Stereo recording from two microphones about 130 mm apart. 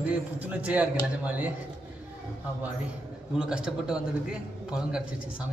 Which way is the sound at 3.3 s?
5° right (ahead or behind).